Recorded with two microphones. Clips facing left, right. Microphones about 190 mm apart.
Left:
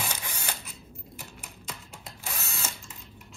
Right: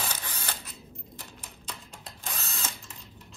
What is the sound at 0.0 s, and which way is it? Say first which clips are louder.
Camera: left 1 dB; 15° left (ahead or behind).